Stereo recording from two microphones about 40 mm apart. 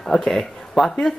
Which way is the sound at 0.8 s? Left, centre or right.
Centre.